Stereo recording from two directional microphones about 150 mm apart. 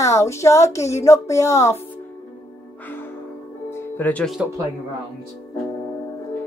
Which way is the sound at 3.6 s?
15° left (ahead or behind).